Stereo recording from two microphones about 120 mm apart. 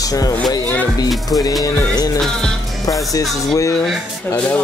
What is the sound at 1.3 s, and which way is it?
Music, 30° left (ahead or behind).